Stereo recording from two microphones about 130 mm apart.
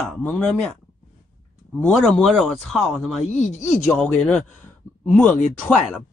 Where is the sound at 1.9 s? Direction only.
Centre (ahead or behind).